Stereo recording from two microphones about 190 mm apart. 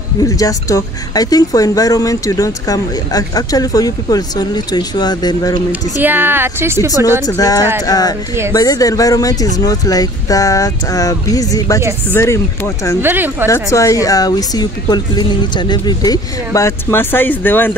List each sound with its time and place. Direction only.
0.2 s speech: 20° left (ahead or behind)
5.7 s a woman's voice: 10° right (ahead or behind)
7.2 s speech: 20° left (ahead or behind)
13.0 s a woman's voice: 10° right (ahead or behind)
13.5 s speech: 15° left (ahead or behind)